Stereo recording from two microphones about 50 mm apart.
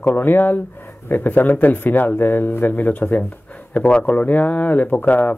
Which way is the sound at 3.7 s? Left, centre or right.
Left.